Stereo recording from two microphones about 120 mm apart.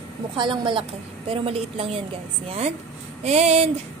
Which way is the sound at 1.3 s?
50° right (ahead or behind).